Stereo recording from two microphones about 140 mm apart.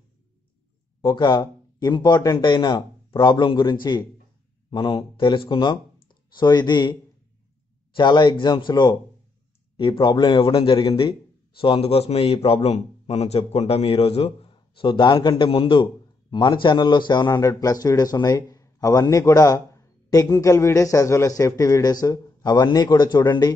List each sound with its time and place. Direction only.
1.0 s a man's voice: 30° left (ahead or behind)